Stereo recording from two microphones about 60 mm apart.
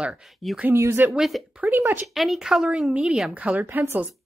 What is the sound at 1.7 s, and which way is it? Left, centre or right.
Speech, right.